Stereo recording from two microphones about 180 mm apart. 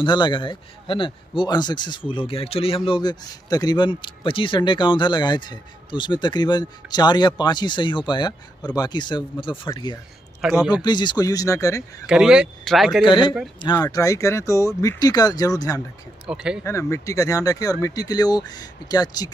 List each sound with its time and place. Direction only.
0.0 s a man's voice: 25° left (ahead or behind)
10.4 s speech: centre (ahead or behind)
10.7 s a man's voice: 25° left (ahead or behind)
12.1 s speech: 5° right (ahead or behind)
13.0 s a man's voice: 25° left (ahead or behind)
16.3 s speech: 5° right (ahead or behind)
16.6 s a man's voice: 15° left (ahead or behind)